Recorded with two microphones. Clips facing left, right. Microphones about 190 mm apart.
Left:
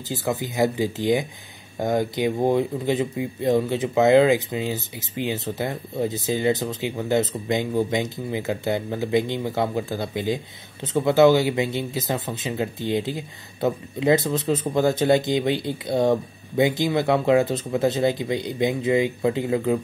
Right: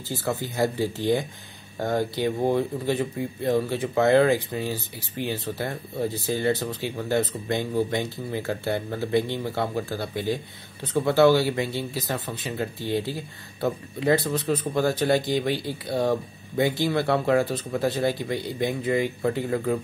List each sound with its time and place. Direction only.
0.1 s speech: 15° left (ahead or behind)